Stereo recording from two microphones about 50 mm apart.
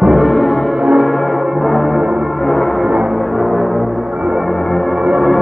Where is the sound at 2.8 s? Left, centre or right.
Centre.